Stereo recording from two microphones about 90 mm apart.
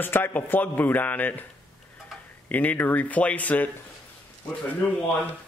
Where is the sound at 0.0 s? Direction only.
20° left (ahead or behind).